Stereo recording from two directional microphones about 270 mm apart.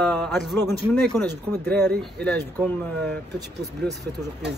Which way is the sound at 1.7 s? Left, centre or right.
Centre.